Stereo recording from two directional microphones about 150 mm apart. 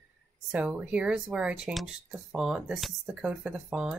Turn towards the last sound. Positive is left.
turn(degrees=-5)  # may be behind; listen again after turning